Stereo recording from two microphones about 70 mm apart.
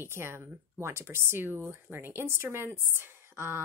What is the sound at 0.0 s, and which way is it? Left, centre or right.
Speech, right.